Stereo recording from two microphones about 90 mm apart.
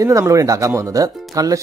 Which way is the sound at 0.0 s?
35° right (ahead or behind).